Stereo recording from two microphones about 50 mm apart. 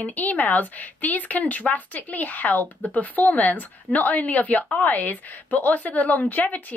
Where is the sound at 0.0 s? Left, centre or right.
Left.